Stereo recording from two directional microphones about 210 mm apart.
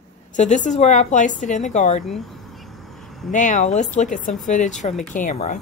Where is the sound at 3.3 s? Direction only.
35° left (ahead or behind).